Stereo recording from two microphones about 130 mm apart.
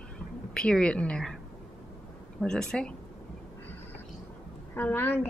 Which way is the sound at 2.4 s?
5° left (ahead or behind).